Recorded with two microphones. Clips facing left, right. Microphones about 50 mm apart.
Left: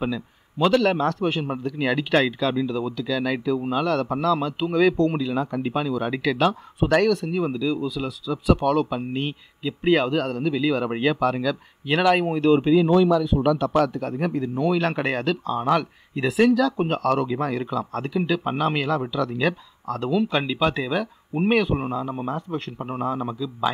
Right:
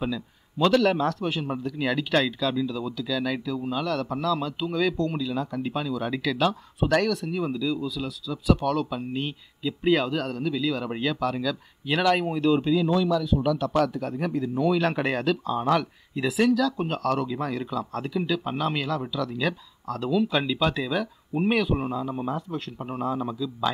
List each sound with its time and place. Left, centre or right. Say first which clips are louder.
0.0 s speech: left 3 dB; centre; by 13.7 s left
14.0 s speech: left 2 dB; centre
15.8 s speech: left 2 dB; left